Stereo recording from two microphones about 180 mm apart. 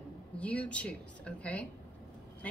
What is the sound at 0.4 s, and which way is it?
A woman's voice, 5° left (ahead or behind).